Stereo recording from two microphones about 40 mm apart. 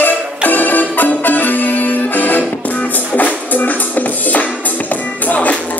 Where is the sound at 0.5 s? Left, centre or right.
Left.